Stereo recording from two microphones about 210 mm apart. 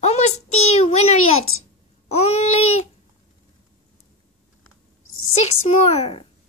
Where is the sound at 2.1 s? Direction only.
30° left (ahead or behind).